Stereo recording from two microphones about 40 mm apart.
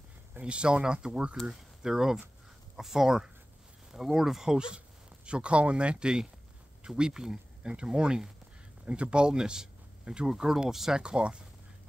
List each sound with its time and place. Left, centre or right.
0.3 s speech: right
1.5 s speech: centre
11.0 s speech: right